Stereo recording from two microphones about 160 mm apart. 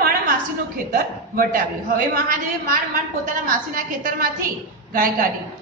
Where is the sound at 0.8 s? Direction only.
65° right (ahead or behind).